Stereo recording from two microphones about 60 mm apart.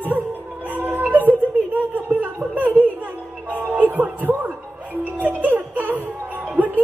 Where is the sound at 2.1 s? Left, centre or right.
Right.